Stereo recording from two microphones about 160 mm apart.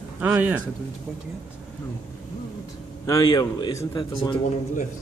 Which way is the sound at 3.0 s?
25° left (ahead or behind).